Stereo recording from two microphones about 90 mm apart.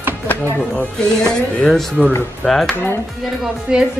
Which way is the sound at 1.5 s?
5° left (ahead or behind).